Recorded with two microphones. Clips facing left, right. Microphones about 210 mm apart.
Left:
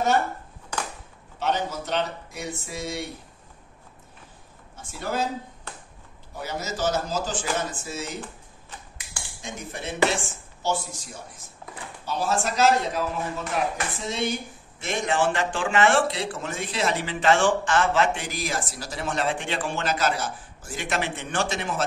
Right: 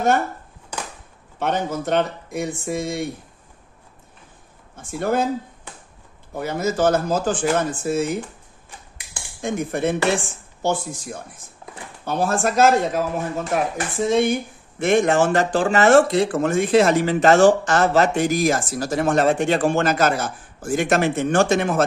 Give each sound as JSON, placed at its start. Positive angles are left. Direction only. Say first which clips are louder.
{"t": 1.4, "sound": "speech", "louder": "right 4 dB", "side_deg": -50}
{"t": 4.7, "sound": "speech", "louder": "right 7 dB", "side_deg": -55}
{"t": 6.3, "sound": "speech", "louder": "right 9 dB", "side_deg": -55}
{"t": 9.4, "sound": "speech", "louder": "right 13 dB", "side_deg": -55}